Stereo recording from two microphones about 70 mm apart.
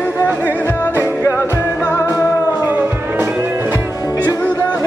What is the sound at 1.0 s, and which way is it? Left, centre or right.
Music, left.